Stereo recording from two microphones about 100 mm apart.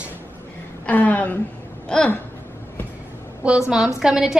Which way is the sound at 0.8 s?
15° left (ahead or behind).